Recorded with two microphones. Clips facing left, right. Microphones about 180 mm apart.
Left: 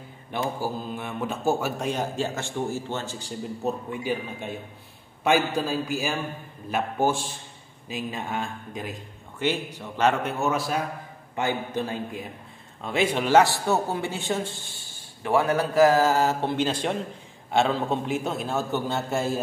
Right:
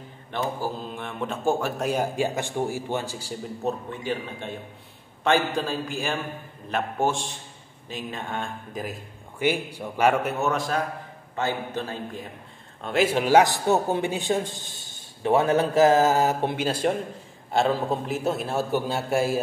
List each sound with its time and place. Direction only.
0.3 s speech: 10° left (ahead or behind)
1.9 s a man's voice: 10° right (ahead or behind)
3.9 s speech: 10° left (ahead or behind)
9.4 s a man's voice: 10° right (ahead or behind); by 12.3 s 10° left (ahead or behind)
12.8 s a man's voice: centre (ahead or behind); by 16.6 s 20° right (ahead or behind)
16.6 s a man's voice: 5° right (ahead or behind)